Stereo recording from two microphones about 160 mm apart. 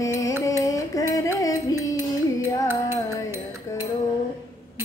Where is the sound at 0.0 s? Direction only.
20° left (ahead or behind).